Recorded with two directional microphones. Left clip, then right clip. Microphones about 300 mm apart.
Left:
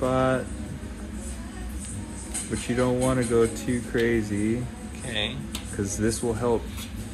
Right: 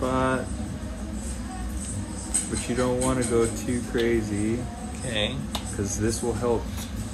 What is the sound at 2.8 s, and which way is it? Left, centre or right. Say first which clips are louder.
Speech: left 1 dB; centre.